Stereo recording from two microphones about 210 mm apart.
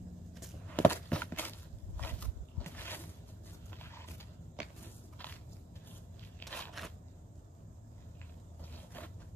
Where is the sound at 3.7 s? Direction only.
10° left (ahead or behind).